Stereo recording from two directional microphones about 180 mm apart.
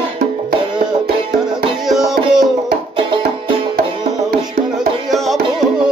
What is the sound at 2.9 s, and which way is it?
Music, 30° right (ahead or behind).